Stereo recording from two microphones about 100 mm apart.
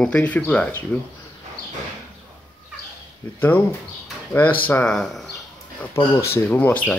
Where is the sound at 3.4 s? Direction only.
20° left (ahead or behind).